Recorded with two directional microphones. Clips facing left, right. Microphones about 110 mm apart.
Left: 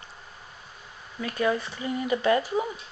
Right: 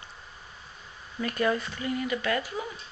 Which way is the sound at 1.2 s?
5° left (ahead or behind).